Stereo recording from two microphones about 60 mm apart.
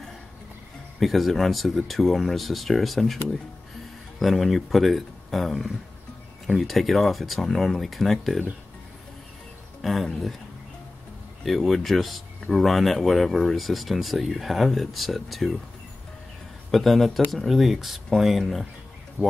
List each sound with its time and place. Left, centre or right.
0.9 s speech: centre
4.2 s speech: centre
9.8 s speech: centre
11.4 s speech: centre
16.7 s speech: centre
19.2 s speech: right